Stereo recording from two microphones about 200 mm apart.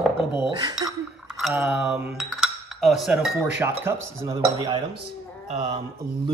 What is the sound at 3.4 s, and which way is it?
Speech, 10° right (ahead or behind).